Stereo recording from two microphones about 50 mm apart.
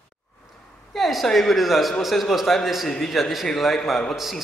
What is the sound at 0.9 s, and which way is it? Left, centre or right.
A man's voice, centre.